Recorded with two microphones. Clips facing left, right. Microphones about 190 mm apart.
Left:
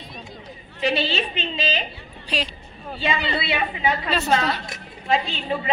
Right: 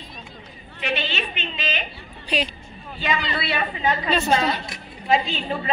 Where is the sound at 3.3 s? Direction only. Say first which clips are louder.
Left 1 dB; 25° left (ahead or behind).